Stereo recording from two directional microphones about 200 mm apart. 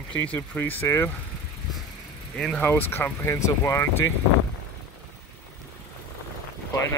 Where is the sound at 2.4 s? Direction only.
5° left (ahead or behind).